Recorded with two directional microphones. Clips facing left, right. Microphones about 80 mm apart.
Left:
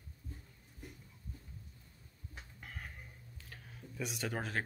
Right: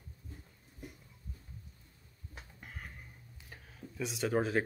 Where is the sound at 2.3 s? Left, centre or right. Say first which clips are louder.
Even; centre.